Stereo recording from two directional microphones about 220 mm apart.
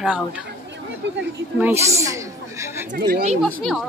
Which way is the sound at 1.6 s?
10° right (ahead or behind).